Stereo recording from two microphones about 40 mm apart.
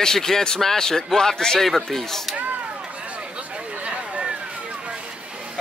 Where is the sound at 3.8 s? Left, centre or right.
Right.